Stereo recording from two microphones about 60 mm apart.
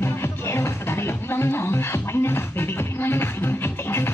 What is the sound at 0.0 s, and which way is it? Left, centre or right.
Music, left.